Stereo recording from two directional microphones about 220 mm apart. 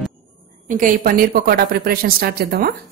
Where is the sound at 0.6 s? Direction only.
35° right (ahead or behind).